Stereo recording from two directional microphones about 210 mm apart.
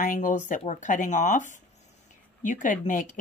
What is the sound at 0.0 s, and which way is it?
Speech, 40° left (ahead or behind).